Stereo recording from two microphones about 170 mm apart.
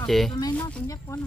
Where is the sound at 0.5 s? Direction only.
15° left (ahead or behind).